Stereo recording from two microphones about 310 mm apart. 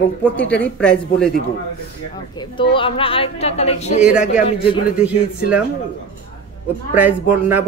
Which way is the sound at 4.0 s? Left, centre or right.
Centre.